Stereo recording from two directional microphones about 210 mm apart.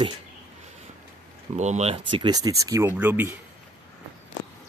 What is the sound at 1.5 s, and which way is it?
Speech, 35° right (ahead or behind).